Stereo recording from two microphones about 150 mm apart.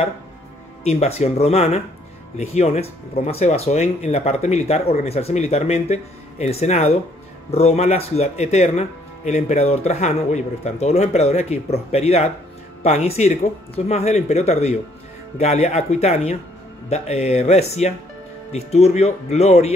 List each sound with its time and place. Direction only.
0.8 s speech: 45° left (ahead or behind)